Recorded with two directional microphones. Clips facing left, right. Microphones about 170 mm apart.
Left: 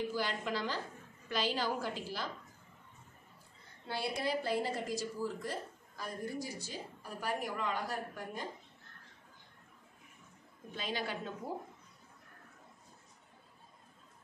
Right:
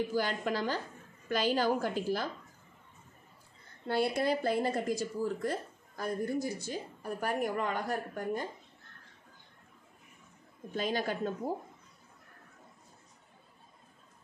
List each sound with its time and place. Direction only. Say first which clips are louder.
0.1 s a woman's voice: right 5 dB; 50° right (ahead or behind)
3.8 s a woman's voice: right 7 dB; 50° right (ahead or behind)
10.7 s a woman's voice: right 6 dB; 45° right (ahead or behind)